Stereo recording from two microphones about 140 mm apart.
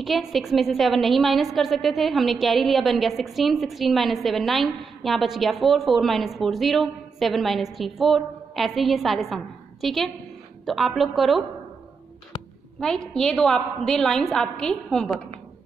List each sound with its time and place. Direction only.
0.0 s a woman's voice: centre (ahead or behind)
12.8 s a woman's voice: 5° left (ahead or behind)